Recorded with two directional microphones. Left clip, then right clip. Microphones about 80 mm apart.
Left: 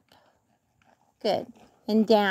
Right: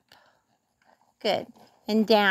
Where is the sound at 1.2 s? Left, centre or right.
Left.